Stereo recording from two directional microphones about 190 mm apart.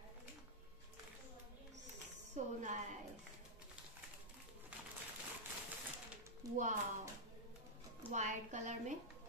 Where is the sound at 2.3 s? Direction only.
40° right (ahead or behind).